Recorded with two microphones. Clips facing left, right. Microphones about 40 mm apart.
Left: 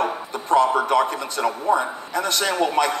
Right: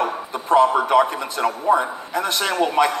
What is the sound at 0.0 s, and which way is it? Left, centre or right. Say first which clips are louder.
A man's voice: right 1 dB; centre.